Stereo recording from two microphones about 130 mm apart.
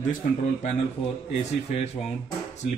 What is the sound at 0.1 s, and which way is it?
Speech, 70° left (ahead or behind).